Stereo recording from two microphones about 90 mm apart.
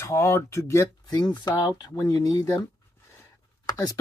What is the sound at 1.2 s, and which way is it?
Speech, 55° left (ahead or behind).